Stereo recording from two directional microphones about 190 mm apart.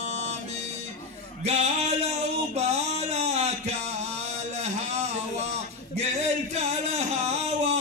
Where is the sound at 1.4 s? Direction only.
35° right (ahead or behind).